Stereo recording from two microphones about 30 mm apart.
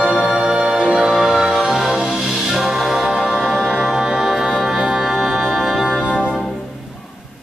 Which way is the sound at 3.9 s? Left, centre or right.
Centre.